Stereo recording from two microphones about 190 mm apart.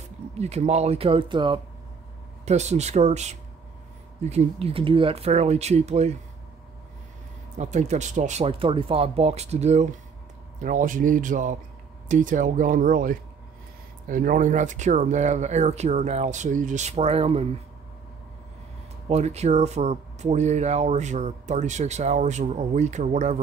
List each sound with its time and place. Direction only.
0.3 s speech: 35° right (ahead or behind)
7.5 s speech: 40° right (ahead or behind)
19.0 s speech: 35° right (ahead or behind)